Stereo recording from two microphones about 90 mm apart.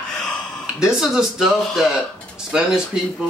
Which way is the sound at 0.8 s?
5° right (ahead or behind).